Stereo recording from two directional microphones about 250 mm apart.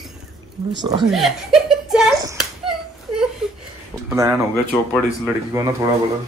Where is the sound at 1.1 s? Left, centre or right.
Centre.